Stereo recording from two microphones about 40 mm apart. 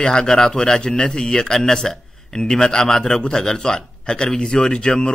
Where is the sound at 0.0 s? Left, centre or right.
Centre.